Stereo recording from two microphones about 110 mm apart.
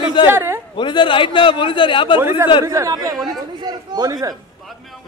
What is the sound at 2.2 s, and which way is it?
A man's voice, 20° right (ahead or behind).